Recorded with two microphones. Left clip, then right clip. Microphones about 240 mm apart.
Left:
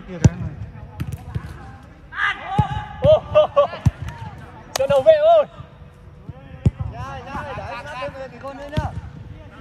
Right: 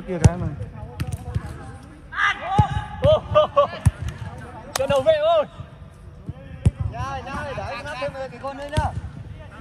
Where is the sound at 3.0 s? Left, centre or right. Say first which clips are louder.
Left 3 dB; left.